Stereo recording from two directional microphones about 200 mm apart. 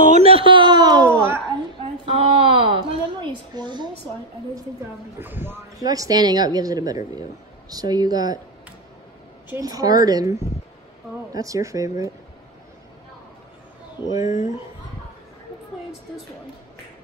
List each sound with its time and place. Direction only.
0.1 s a sound: 30° right (ahead or behind)
2.1 s wail: 25° right (ahead or behind)
2.9 s a sound: 25° right (ahead or behind)
5.2 s speech: 10° right (ahead or behind)
9.5 s speech: 20° right (ahead or behind)
14.1 s speech: 20° right (ahead or behind)